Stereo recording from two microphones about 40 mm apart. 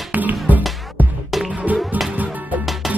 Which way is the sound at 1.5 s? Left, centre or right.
Right.